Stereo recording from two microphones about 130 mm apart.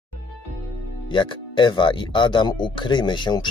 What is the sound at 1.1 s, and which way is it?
Speech, 40° left (ahead or behind).